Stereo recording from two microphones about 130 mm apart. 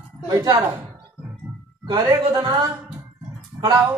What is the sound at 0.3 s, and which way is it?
Speech, 30° right (ahead or behind).